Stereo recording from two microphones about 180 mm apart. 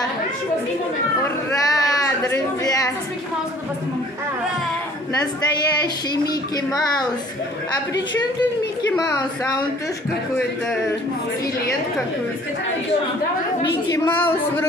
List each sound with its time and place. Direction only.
1.2 s speech: 20° left (ahead or behind)
6.2 s speech: 20° left (ahead or behind)
13.9 s a woman's voice: 10° left (ahead or behind)